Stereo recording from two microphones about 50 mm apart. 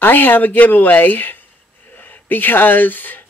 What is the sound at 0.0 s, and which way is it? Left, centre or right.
Speech, left.